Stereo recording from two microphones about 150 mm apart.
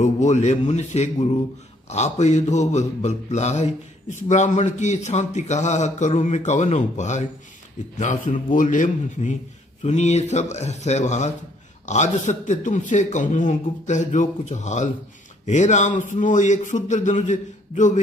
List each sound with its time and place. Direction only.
0.0 s mantra: 50° left (ahead or behind)
8.0 s a man's voice: 55° left (ahead or behind)
9.8 s mantra: 50° left (ahead or behind)
11.8 s a man's voice: 50° left (ahead or behind)